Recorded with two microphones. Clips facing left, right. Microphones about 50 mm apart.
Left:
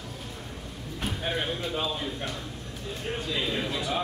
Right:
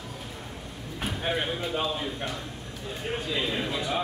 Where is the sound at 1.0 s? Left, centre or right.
Centre.